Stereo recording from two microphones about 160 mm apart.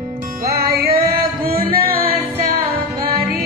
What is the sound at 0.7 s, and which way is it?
Music, 70° right (ahead or behind).